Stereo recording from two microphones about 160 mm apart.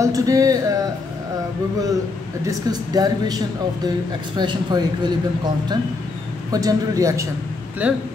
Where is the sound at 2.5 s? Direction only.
25° right (ahead or behind).